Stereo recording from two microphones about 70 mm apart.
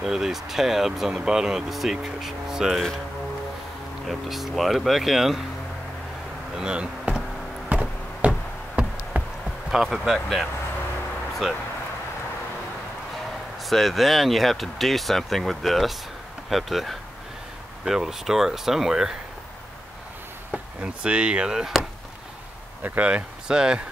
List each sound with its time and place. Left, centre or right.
0.0 s speech: centre
4.1 s speech: centre
6.5 s insect: centre
7.7 s a sound: centre
9.7 s speech: centre
13.7 s speech: centre
20.5 s speech: centre
22.8 s speech: centre